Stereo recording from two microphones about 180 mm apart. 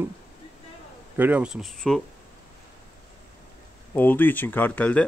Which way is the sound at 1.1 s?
10° right (ahead or behind).